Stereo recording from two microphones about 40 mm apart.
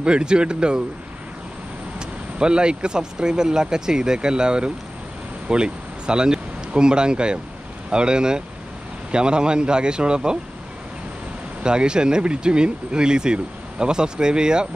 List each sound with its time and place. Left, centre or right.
0.0 s speech: right
2.0 s speech: right
11.6 s speech: right